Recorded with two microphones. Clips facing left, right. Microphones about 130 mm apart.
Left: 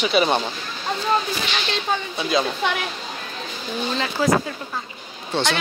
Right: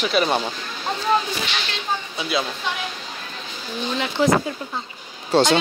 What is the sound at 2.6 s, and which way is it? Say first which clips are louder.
Speech: left 5 dB; 65° left (ahead or behind).